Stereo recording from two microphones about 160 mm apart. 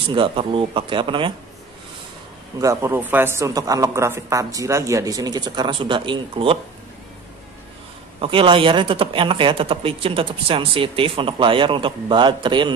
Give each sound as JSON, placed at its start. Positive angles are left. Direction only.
{"t": 0.1, "sound": "a man's voice", "side_deg": -30}
{"t": 2.6, "sound": "speech", "side_deg": -20}
{"t": 8.2, "sound": "a man's voice", "side_deg": -35}